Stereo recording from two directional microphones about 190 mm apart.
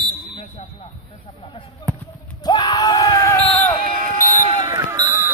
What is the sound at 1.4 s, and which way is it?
Speech, 30° left (ahead or behind).